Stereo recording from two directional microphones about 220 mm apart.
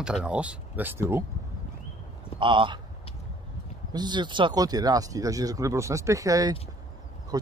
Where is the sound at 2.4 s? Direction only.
20° right (ahead or behind).